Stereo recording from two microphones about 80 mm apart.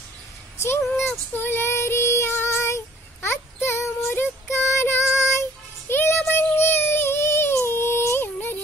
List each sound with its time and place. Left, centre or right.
0.6 s speech: left
1.3 s child singing: left